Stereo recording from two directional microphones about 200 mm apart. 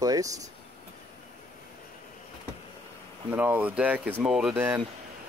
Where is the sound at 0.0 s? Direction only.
15° right (ahead or behind).